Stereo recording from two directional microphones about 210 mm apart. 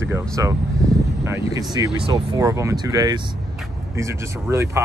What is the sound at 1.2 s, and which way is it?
Speech, 15° right (ahead or behind).